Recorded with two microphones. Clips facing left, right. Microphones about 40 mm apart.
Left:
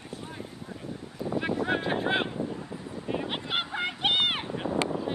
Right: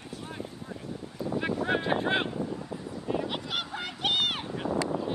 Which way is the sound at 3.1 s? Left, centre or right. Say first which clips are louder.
Even; left.